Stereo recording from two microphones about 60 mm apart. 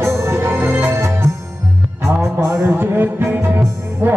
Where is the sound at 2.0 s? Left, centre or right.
Right.